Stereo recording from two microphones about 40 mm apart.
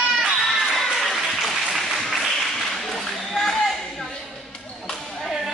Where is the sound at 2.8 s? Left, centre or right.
Centre.